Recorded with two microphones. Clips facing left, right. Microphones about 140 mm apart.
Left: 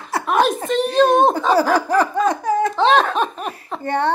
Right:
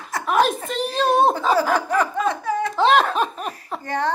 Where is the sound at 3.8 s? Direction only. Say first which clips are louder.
Left 4 dB; 30° left (ahead or behind).